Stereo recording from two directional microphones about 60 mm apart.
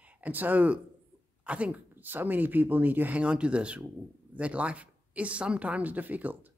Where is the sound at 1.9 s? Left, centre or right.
Right.